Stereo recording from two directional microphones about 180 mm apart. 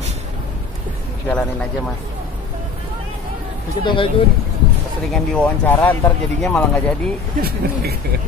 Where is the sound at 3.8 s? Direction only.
30° left (ahead or behind).